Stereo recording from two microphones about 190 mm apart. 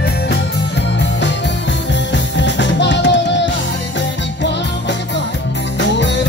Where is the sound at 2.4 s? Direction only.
70° left (ahead or behind).